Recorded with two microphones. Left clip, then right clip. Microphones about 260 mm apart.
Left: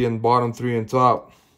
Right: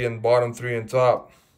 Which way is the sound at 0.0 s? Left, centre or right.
Centre.